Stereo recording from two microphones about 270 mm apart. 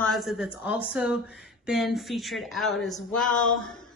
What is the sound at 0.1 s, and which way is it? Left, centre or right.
Speech, centre.